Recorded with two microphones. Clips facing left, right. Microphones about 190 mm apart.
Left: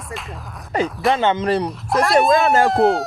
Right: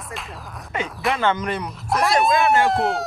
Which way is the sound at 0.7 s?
35° left (ahead or behind).